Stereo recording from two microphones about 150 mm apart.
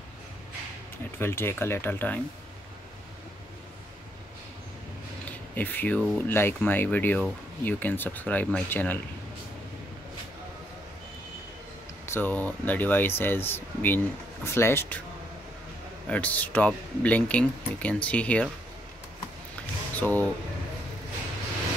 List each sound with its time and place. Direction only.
1.2 s speech: 15° left (ahead or behind)
5.5 s speech: 10° left (ahead or behind)
12.1 s speech: 10° left (ahead or behind)
16.1 s speech: 10° left (ahead or behind)
19.6 s a sound: 10° left (ahead or behind)